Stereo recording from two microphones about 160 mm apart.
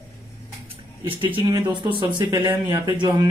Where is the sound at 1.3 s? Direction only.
30° right (ahead or behind).